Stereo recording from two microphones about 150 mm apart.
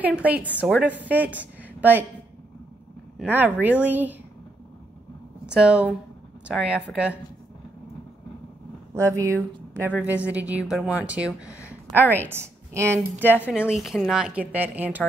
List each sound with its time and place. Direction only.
0.0 s a woman's voice: 10° right (ahead or behind)
3.3 s a woman's voice: 10° right (ahead or behind)
5.5 s a woman's voice: 5° right (ahead or behind)
8.9 s a woman's voice: 20° right (ahead or behind)
11.9 s a woman's voice: 10° left (ahead or behind)
12.3 s a woman's voice: 15° right (ahead or behind)